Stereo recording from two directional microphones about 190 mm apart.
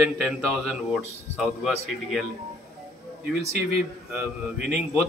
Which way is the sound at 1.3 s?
Centre (ahead or behind).